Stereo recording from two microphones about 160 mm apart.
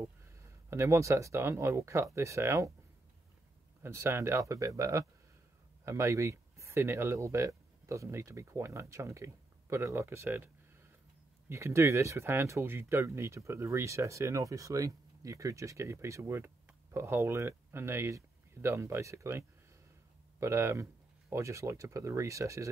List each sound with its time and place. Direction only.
0.0 s speech: 15° right (ahead or behind)
3.8 s speech: 15° right (ahead or behind)